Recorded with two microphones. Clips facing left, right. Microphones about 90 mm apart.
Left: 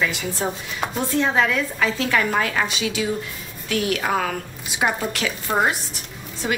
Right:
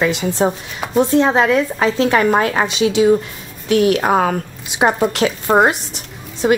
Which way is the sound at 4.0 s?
40° right (ahead or behind).